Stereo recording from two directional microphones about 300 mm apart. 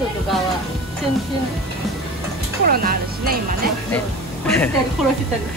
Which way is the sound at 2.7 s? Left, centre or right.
Right.